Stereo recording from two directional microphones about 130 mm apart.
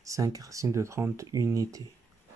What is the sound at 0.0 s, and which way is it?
Speech, 25° right (ahead or behind).